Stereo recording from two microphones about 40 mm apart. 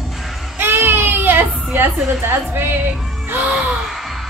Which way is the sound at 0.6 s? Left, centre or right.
Right.